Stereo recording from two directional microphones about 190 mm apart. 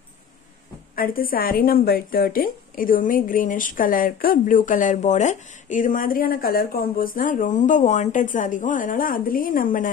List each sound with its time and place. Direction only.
0.9 s a woman's voice: 50° left (ahead or behind)